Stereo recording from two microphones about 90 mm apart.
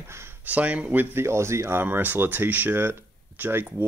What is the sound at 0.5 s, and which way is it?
Speech, 15° right (ahead or behind).